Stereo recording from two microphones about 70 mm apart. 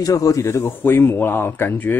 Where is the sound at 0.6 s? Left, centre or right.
Left.